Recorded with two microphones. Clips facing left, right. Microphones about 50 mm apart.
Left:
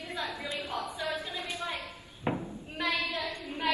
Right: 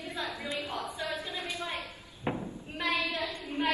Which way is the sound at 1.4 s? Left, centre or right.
Left.